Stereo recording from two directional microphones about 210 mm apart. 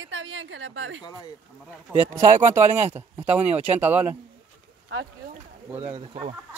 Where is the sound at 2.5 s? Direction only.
10° right (ahead or behind).